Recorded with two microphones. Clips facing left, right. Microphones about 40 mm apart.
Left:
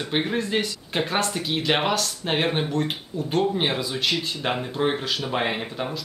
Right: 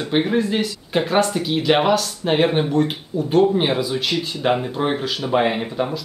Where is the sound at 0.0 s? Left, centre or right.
Centre.